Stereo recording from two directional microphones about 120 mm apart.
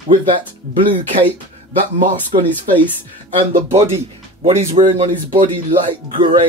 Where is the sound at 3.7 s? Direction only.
60° right (ahead or behind).